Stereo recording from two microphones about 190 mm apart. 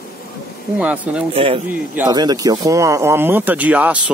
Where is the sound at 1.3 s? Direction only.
30° right (ahead or behind); by 4.0 s 10° right (ahead or behind).